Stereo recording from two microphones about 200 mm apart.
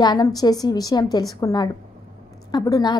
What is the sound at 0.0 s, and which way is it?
A woman's voice, 20° left (ahead or behind).